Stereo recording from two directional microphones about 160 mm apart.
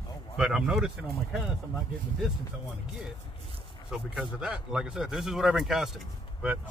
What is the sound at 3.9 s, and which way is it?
Speech, 5° right (ahead or behind).